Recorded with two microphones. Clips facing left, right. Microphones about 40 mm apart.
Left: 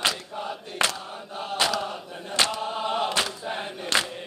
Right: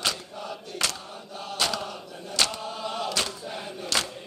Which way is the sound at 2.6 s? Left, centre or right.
Left.